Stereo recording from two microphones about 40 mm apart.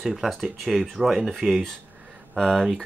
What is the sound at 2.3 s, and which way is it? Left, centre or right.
Speech, centre.